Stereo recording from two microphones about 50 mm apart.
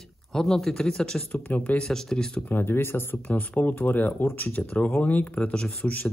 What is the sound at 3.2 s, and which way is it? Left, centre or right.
Speech, left.